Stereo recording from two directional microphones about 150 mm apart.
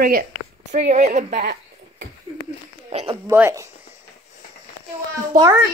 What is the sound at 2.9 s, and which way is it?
Speech, 40° right (ahead or behind).